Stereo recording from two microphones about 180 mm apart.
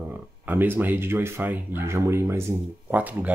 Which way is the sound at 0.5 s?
10° right (ahead or behind).